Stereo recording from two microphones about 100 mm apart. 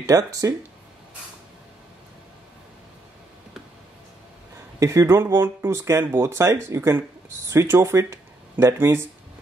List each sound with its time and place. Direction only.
0.0 s speech: 35° right (ahead or behind)
4.7 s speech: 35° right (ahead or behind)